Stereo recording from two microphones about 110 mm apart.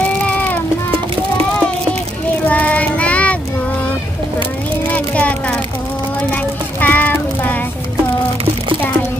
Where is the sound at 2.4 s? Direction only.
15° left (ahead or behind).